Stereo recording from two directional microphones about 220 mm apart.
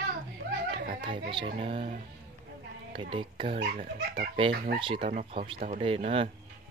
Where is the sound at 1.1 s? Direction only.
25° right (ahead or behind).